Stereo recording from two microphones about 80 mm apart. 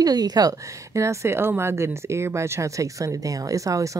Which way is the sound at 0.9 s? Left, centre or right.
Right.